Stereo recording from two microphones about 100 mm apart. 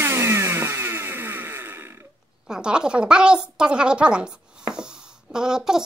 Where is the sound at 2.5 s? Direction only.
10° right (ahead or behind).